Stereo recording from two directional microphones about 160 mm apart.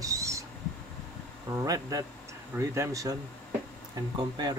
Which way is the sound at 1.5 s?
20° right (ahead or behind).